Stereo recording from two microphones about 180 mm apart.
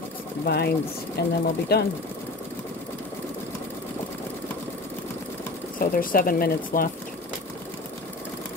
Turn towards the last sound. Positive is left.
turn(degrees=55)  # may be behind; listen again after turning